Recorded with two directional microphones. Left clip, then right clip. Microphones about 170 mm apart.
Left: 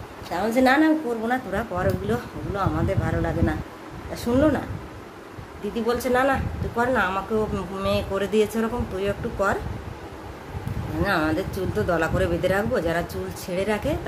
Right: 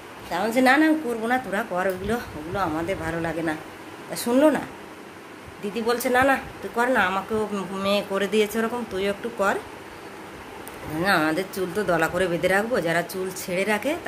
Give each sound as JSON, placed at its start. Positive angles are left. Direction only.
{"t": 0.3, "sound": "speech", "side_deg": -10}
{"t": 5.9, "sound": "speech", "side_deg": -10}
{"t": 11.1, "sound": "speech", "side_deg": -20}